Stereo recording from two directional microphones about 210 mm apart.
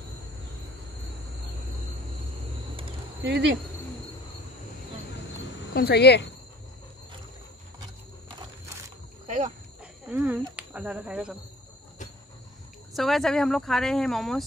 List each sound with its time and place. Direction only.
3.2 s speech: 55° right (ahead or behind)
5.7 s speech: 50° left (ahead or behind)
8.4 s a sound: 15° right (ahead or behind)
10.0 s speech: 10° right (ahead or behind)
12.9 s speech: centre (ahead or behind)